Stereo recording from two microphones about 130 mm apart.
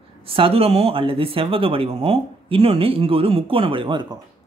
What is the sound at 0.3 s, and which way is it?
Speech, 45° right (ahead or behind).